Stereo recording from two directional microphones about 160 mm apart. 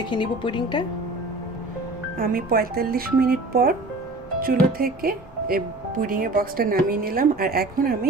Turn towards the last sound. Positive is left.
turn(degrees=-70)  # may be behind; listen again after turning